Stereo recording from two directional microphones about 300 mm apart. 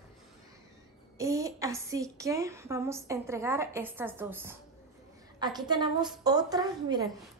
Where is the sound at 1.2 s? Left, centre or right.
Centre.